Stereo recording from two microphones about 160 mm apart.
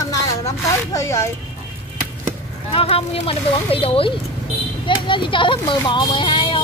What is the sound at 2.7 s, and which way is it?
A child's voice, 35° left (ahead or behind).